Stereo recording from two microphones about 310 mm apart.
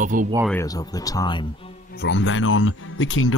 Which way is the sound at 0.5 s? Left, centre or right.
Centre.